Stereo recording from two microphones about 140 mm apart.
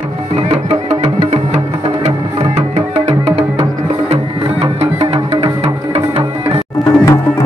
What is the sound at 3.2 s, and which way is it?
Music, 45° right (ahead or behind).